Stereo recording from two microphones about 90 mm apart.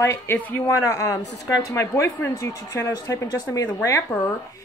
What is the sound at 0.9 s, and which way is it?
A woman's voice, 35° left (ahead or behind).